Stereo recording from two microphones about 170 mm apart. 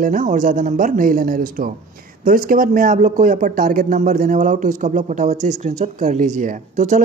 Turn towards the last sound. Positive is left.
turn(degrees=-45)  # may be behind; listen again after turning